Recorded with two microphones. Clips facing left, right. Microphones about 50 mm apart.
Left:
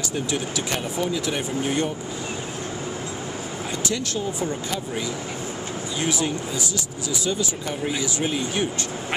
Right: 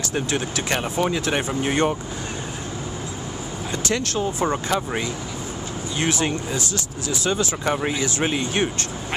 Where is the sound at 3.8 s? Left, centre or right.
Right.